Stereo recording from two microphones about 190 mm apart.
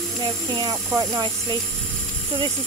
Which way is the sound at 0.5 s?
20° right (ahead or behind).